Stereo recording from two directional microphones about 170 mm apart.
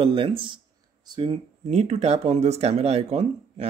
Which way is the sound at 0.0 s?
30° right (ahead or behind).